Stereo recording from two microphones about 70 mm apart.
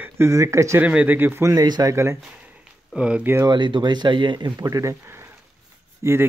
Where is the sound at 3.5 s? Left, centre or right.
Right.